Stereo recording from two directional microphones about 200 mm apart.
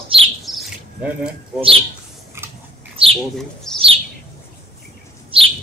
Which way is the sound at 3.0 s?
25° right (ahead or behind).